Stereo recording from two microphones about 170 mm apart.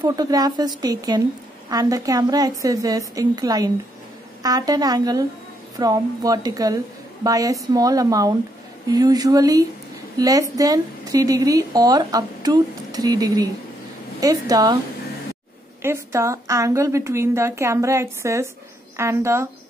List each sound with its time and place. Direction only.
0.0 s a woman's voice: 25° right (ahead or behind)
15.8 s a woman's voice: 15° right (ahead or behind)